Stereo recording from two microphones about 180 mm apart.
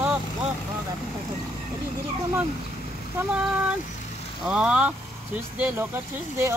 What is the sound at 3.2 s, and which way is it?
Speech, 5° right (ahead or behind).